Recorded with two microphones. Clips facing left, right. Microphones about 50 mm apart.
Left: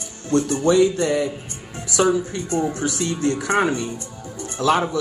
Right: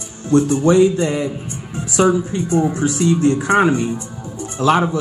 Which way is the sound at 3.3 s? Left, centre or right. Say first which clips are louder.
Right 5 dB; right.